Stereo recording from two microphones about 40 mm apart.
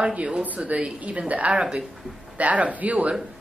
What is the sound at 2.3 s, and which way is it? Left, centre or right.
Speech, right.